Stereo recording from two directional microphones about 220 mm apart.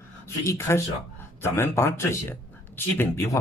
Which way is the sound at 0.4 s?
15° left (ahead or behind).